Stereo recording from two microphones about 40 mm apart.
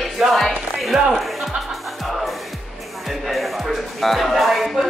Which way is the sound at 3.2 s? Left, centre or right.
Centre.